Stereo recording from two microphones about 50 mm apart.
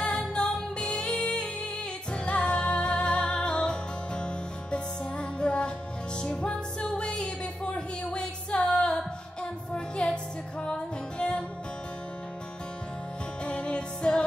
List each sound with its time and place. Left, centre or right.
0.0 s music: centre
13.5 s music: left